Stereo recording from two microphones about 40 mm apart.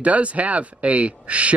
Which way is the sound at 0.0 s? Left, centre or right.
Right.